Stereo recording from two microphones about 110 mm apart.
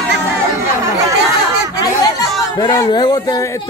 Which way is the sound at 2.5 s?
40° left (ahead or behind).